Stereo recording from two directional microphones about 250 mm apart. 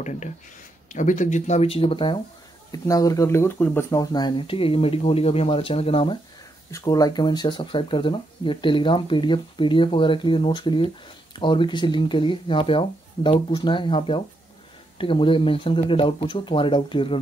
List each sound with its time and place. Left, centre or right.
0.0 s speech: left